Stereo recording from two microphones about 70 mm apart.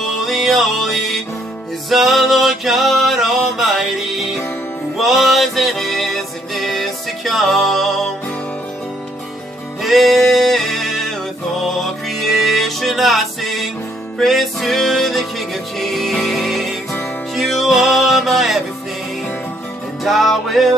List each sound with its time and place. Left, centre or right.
0.3 s music: centre
9.8 s music: centre
20.0 s music: centre